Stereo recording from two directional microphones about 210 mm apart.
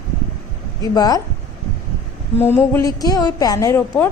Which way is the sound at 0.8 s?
15° left (ahead or behind).